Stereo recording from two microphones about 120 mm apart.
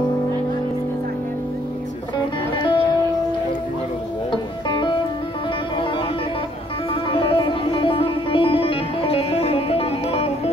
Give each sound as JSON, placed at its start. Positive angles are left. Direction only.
{"t": 2.5, "sound": "music", "side_deg": 40}
{"t": 4.3, "sound": "music", "side_deg": 40}
{"t": 7.1, "sound": "music", "side_deg": 45}